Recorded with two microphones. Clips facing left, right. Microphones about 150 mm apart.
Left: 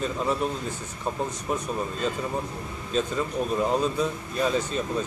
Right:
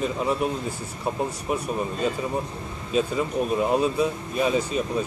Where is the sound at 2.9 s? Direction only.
10° right (ahead or behind).